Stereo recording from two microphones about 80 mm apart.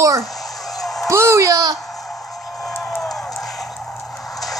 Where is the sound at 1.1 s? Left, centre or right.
Right.